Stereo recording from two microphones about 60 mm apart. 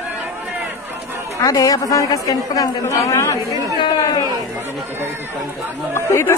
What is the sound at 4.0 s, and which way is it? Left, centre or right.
Speech, left.